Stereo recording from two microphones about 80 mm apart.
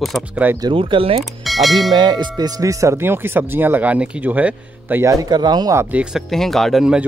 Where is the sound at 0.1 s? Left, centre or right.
Centre.